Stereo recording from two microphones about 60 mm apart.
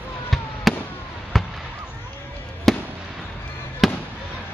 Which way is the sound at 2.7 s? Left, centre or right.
Centre.